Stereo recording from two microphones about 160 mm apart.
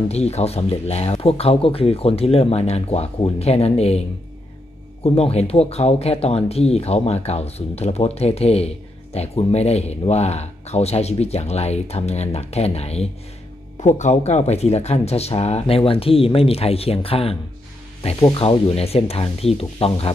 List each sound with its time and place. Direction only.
0.1 s speech: 40° left (ahead or behind)
5.0 s speech: 40° left (ahead or behind)
18.4 s speech: 40° left (ahead or behind)